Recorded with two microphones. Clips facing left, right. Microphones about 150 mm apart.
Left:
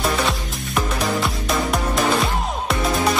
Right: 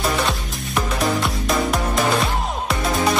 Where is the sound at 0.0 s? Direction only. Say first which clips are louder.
Even; centre (ahead or behind).